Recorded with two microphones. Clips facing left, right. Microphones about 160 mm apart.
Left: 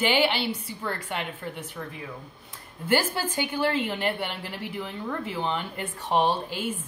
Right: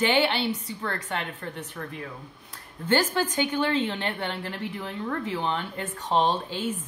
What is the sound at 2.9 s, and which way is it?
A woman's voice, 10° left (ahead or behind).